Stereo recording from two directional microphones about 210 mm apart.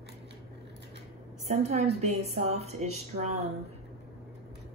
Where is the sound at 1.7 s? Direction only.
30° right (ahead or behind).